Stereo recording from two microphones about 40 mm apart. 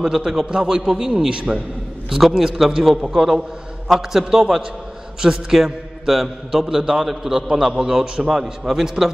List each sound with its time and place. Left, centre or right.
0.0 s a man's voice: centre
0.5 s a man's voice: centre
2.0 s a man's voice: centre